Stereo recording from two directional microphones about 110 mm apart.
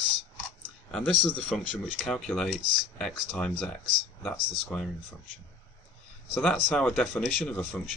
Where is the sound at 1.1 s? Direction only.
45° right (ahead or behind).